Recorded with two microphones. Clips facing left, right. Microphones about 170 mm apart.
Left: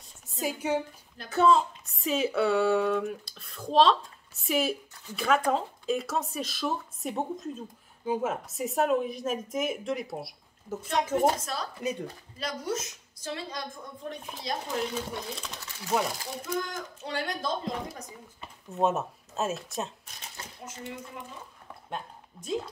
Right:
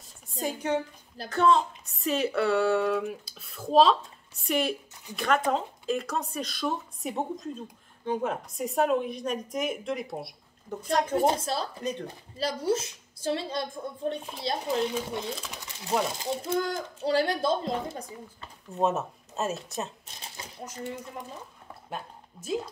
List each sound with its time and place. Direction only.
0.3 s a woman's voice: 5° left (ahead or behind)
11.1 s a woman's voice: 30° right (ahead or behind)
11.8 s speech: 10° left (ahead or behind)
12.4 s a woman's voice: 30° right (ahead or behind)
15.2 s speech: centre (ahead or behind)
15.5 s speech: 15° right (ahead or behind)
16.2 s speech: 30° right (ahead or behind)
18.7 s speech: centre (ahead or behind)
20.6 s speech: 35° right (ahead or behind)
21.8 s speech: 5° right (ahead or behind)